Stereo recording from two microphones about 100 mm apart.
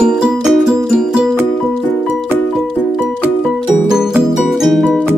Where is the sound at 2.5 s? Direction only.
5° right (ahead or behind).